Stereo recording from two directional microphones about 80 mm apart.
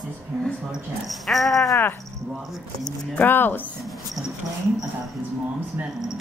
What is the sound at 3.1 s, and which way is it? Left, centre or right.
Speech, left.